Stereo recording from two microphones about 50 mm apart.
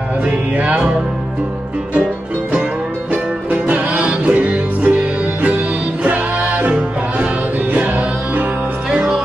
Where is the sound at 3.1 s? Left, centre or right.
Right.